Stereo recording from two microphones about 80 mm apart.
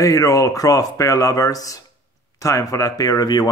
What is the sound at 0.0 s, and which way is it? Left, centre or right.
Speech, left.